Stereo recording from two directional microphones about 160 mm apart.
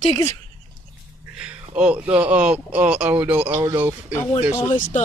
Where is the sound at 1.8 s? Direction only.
5° right (ahead or behind).